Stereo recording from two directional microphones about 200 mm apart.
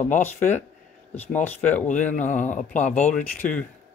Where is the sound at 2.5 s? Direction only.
40° left (ahead or behind).